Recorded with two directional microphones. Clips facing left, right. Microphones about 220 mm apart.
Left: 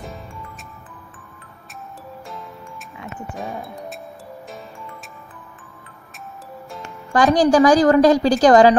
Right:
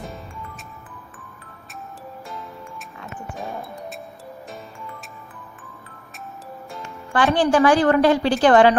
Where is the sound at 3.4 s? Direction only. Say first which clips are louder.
Left 2 dB; centre (ahead or behind).